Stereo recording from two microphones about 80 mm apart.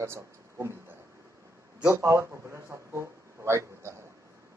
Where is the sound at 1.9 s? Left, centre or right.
Right.